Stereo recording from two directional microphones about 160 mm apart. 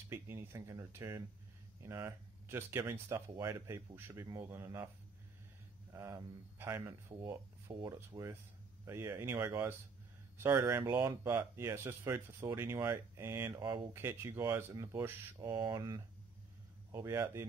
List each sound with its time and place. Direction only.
0.1 s speech: 15° right (ahead or behind)
5.9 s speech: 20° right (ahead or behind)